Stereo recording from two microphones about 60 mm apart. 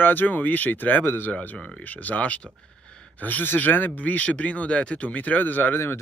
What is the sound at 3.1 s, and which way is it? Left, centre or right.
Speech, left.